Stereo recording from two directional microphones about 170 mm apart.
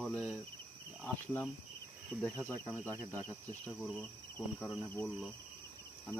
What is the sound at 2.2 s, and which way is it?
Insect, 10° left (ahead or behind).